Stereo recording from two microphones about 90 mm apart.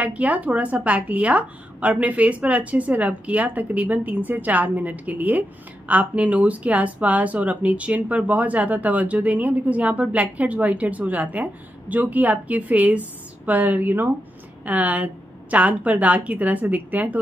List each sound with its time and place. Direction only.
0.0 s a woman's voice: 15° right (ahead or behind)